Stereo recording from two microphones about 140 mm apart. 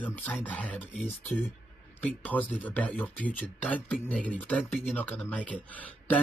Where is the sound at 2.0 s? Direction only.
10° left (ahead or behind).